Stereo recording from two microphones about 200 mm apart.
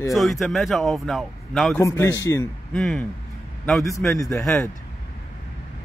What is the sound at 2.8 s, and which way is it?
A man's voice, centre (ahead or behind).